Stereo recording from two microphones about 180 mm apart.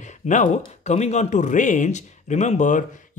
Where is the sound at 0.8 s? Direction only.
40° left (ahead or behind).